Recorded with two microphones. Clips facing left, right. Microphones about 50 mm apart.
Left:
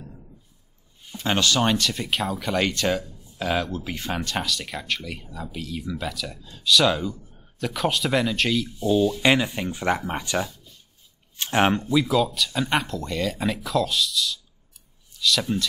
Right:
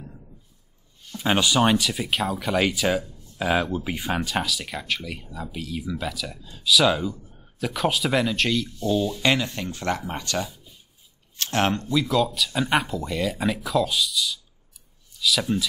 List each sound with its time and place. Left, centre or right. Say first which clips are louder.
1.1 s speech: right 1 dB; centre
10.5 s writing: right 1 dB; centre
11.3 s speech: left 3 dB; centre